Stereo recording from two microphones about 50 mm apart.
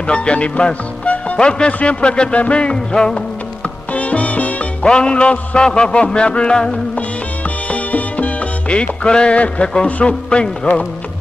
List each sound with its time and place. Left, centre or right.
0.0 s speech: left
1.7 s music: left
3.9 s music: left
4.8 s music: centre
7.7 s music: left